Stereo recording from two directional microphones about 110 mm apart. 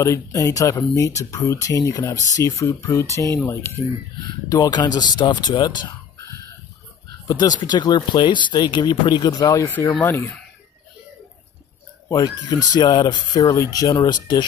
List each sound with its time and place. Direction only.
0.0 s speech: 30° left (ahead or behind)
4.5 s speech: 35° left (ahead or behind)
6.1 s a sound: 30° left (ahead or behind)
7.2 s speech: 40° left (ahead or behind)
9.7 s speech: 20° left (ahead or behind)
12.1 s speech: 35° left (ahead or behind)